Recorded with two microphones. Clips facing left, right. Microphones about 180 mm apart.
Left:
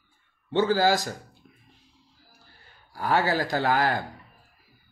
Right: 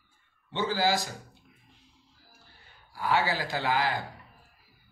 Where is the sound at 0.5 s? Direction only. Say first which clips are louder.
Left 6 dB; 50° left (ahead or behind).